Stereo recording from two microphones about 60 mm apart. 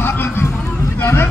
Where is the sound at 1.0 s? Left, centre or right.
Left.